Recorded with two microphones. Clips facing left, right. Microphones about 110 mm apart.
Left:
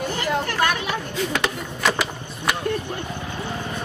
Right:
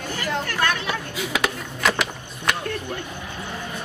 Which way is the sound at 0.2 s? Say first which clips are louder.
Left 2 dB; 20° left (ahead or behind).